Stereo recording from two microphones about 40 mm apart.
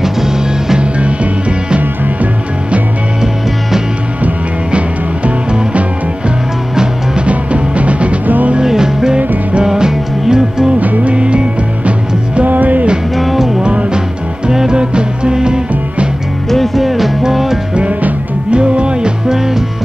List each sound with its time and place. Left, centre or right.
0.0 s music: centre
4.7 s music: right
7.2 s music: right
8.6 s music: centre
10.8 s music: right
11.1 s music: right
12.4 s music: right
13.2 s music: centre
13.6 s music: right
16.4 s music: centre
18.5 s music: right
19.2 s music: centre